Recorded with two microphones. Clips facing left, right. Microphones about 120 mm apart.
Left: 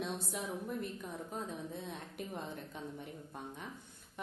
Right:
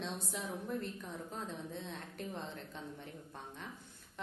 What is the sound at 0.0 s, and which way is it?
A woman's voice, 5° left (ahead or behind).